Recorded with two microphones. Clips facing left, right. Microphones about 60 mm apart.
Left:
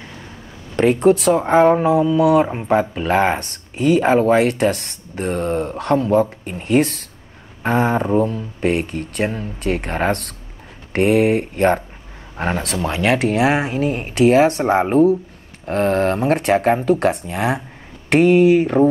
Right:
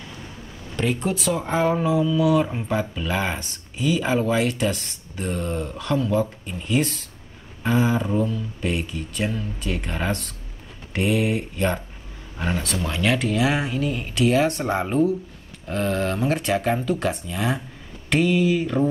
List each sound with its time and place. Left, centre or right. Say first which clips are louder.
0.7 s speech: left 11 dB; left
2.7 s speech: left 8 dB; left
8.1 s speech: left 6 dB; left